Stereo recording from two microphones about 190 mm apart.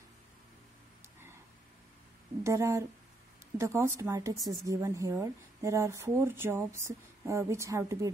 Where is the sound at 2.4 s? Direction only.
15° right (ahead or behind).